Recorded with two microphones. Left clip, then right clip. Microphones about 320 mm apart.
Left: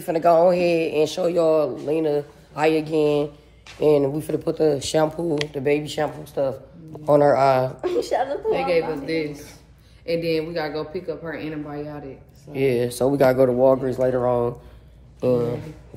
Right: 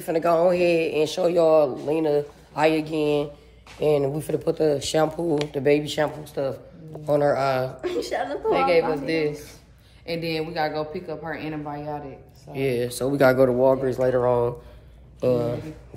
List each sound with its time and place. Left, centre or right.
0.0 s a man's voice: centre
7.1 s speech: left
7.8 s a man's voice: centre
8.5 s a woman's voice: right
10.0 s speech: centre
12.5 s speech: centre
13.1 s a man's voice: centre